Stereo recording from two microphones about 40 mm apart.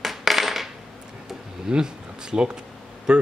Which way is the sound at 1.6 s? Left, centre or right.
Centre.